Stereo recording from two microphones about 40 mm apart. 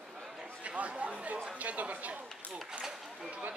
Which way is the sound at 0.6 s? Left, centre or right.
Right.